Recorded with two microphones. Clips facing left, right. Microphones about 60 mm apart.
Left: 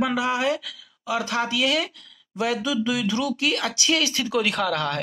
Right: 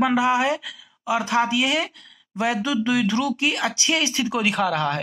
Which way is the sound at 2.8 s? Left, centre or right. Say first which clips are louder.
Right 3 dB; right.